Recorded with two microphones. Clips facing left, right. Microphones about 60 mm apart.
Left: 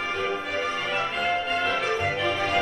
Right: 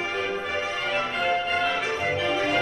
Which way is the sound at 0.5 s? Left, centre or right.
Centre.